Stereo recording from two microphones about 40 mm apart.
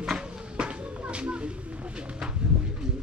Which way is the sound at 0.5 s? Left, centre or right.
Right.